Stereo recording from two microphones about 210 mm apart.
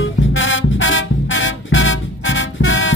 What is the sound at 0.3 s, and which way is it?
Music, 65° left (ahead or behind).